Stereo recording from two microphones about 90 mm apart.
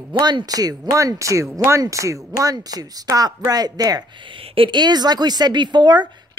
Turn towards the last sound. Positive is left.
turn(degrees=-55)  # may be behind; listen again after turning